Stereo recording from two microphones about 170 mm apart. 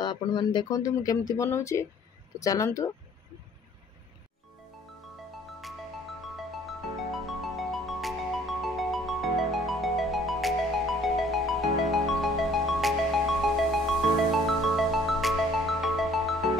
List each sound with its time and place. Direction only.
0.0 s speech: 25° left (ahead or behind)
6.3 s music: centre (ahead or behind)